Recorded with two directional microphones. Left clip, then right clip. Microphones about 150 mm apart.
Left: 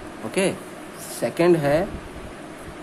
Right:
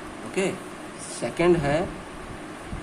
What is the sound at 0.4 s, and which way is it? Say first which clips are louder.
Speech: left 4 dB; 40° left (ahead or behind).